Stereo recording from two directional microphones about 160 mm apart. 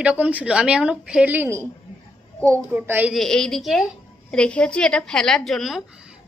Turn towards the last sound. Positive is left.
turn(degrees=0)  # may be behind; listen again after turning